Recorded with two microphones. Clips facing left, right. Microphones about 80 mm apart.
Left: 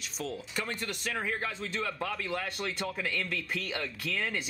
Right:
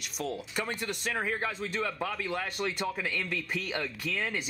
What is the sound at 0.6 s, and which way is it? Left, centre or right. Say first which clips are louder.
Speech: right 1 dB; centre.